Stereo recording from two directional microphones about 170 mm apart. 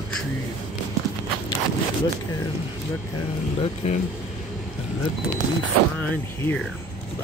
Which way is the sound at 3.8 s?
40° left (ahead or behind).